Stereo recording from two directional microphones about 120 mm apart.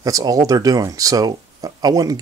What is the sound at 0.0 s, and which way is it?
Speech, 30° right (ahead or behind).